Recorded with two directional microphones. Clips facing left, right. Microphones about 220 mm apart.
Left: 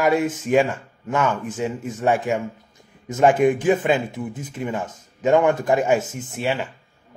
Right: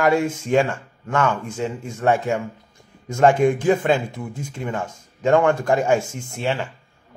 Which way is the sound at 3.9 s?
5° left (ahead or behind).